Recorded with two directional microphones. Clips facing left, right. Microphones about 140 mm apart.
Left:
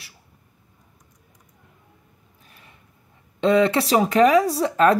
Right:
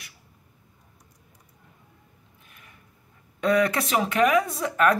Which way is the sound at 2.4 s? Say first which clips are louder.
Left 3 dB; 30° left (ahead or behind).